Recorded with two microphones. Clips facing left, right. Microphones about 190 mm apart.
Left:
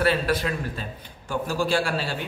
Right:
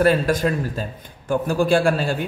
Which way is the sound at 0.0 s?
45° right (ahead or behind).